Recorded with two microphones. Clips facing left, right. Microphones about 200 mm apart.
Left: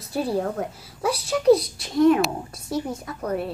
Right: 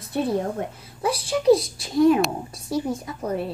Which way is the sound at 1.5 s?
25° right (ahead or behind).